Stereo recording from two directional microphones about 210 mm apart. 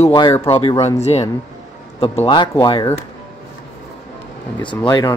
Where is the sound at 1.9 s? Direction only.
25° left (ahead or behind).